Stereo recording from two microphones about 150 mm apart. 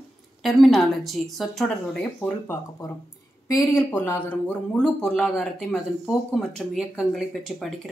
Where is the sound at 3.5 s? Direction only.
15° left (ahead or behind).